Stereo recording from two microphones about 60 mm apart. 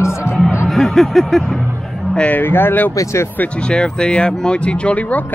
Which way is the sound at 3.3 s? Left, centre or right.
Centre.